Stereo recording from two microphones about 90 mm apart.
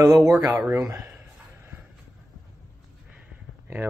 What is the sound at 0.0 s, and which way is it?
Speech, 35° right (ahead or behind).